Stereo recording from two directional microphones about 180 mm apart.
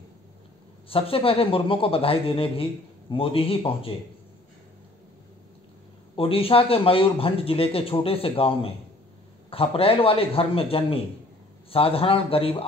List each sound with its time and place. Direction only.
0.8 s speech: 30° left (ahead or behind)
6.1 s speech: 30° left (ahead or behind)